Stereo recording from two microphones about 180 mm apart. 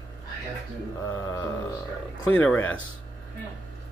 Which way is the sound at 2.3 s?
10° left (ahead or behind).